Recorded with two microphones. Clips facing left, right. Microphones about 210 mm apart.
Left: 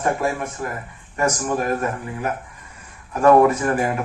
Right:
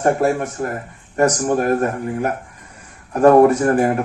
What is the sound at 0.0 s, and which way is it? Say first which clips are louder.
Speech: right 5 dB; 45° right (ahead or behind).